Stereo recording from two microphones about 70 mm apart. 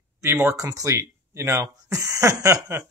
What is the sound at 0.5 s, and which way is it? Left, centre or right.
Speech, right.